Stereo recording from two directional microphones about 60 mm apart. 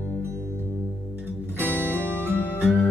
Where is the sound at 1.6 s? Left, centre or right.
Right.